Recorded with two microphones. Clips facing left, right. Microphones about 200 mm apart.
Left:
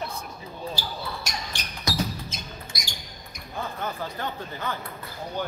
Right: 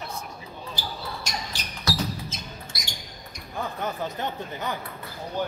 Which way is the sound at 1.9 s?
15° left (ahead or behind).